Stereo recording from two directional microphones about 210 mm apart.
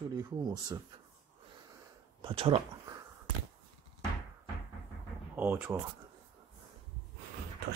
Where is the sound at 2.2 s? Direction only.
25° right (ahead or behind).